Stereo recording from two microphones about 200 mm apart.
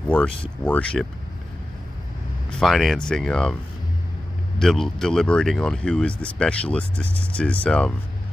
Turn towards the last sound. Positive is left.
turn(degrees=5)  # may be behind; listen again after turning